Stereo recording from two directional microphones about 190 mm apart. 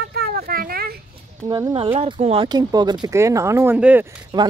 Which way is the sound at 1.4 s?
20° right (ahead or behind).